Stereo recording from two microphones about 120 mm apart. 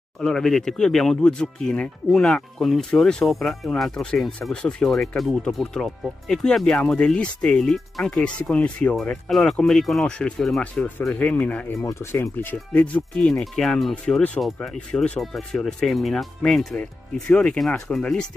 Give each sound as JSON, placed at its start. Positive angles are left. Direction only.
{"t": 0.2, "sound": "speech", "side_deg": 5}
{"t": 11.7, "sound": "speech", "side_deg": 25}